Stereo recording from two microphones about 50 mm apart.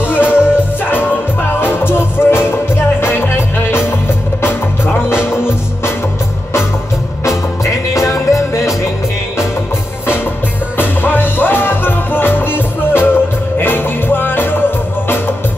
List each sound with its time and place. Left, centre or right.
0.0 s music: left
1.6 s music: left
5.2 s music: left
7.9 s music: left
10.8 s music: left